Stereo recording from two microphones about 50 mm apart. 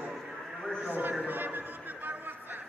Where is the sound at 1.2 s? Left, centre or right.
Right.